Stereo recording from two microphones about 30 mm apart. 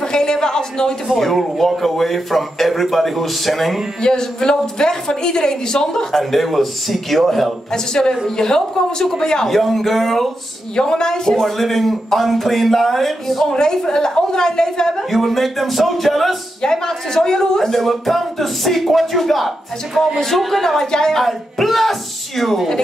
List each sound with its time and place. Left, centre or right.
0.0 s a sound: left
1.1 s speech: centre
4.0 s a woman's voice: left
6.1 s speech: centre
7.7 s a woman's voice: left
9.5 s speech: centre
10.8 s a woman's voice: left
11.4 s speech: centre
13.5 s a woman's voice: left
15.0 s speech: centre
16.6 s speech: centre
20.6 s speech: centre
21.2 s speech: centre